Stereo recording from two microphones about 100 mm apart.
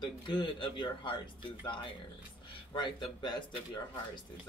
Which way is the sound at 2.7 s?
50° left (ahead or behind).